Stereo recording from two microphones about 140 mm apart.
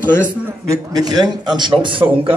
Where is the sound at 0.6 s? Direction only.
30° right (ahead or behind).